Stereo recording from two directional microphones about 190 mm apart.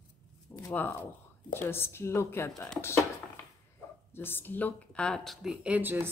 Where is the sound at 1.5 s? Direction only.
10° left (ahead or behind).